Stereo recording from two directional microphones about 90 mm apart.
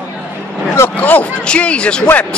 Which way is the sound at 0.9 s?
20° left (ahead or behind).